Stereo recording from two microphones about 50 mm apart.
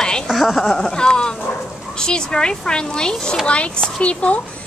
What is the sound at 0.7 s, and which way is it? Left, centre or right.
A child's voice, centre.